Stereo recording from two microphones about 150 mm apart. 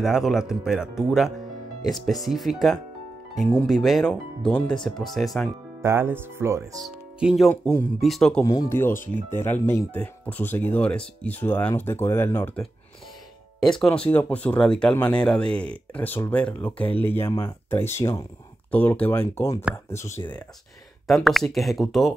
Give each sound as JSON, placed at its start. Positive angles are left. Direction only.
{"t": 0.0, "sound": "speech", "side_deg": 0}
{"t": 5.8, "sound": "speech", "side_deg": -15}
{"t": 6.8, "sound": "speech", "side_deg": -5}
{"t": 8.5, "sound": "speech", "side_deg": 20}
{"t": 13.6, "sound": "speech", "side_deg": 5}
{"t": 21.1, "sound": "speech", "side_deg": 0}